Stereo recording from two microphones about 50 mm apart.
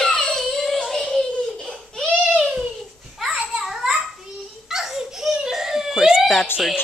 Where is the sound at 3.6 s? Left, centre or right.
Centre.